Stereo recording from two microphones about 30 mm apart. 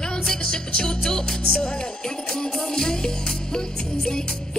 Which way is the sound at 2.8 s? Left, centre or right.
Left.